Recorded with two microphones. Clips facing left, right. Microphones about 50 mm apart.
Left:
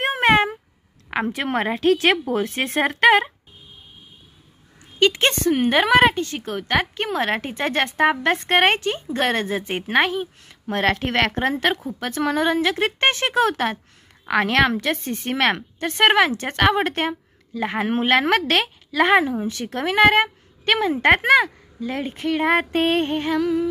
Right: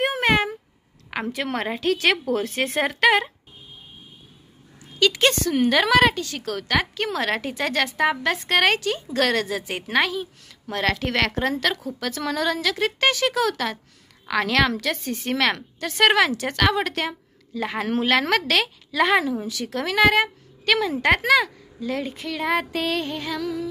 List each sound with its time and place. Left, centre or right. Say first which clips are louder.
0.0 s a sound: left 3 dB; left
1.1 s a woman's voice: left 4 dB; left
4.9 s a woman's voice: left 1 dB; left